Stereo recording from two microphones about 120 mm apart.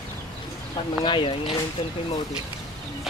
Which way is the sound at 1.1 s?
40° left (ahead or behind).